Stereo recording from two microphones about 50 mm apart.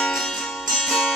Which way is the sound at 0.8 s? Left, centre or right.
Centre.